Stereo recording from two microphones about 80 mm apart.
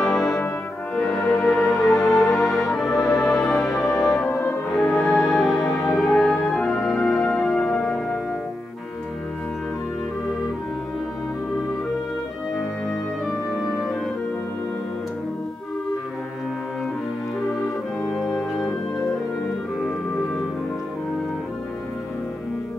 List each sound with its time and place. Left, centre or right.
0.0 s brass instrument: centre
1.2 s music: centre
4.3 s music: left
4.6 s music: centre
13.5 s music: centre
18.1 s organ: centre